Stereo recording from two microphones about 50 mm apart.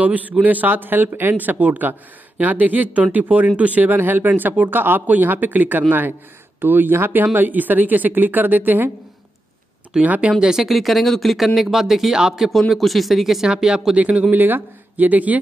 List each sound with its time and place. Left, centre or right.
0.0 s speech: right
10.0 s speech: right
10.4 s speech: centre
12.4 s speech: centre
13.9 s speech: right
14.3 s speech: right